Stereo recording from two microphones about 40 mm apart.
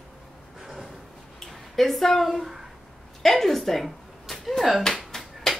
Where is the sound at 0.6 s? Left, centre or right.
Centre.